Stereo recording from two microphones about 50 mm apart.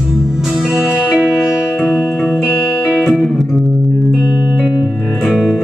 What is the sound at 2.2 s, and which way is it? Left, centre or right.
Music, centre.